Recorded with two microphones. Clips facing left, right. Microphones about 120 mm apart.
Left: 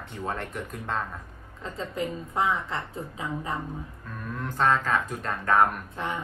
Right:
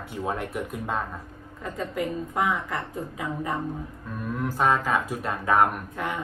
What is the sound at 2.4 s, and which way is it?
A woman's voice, 30° left (ahead or behind).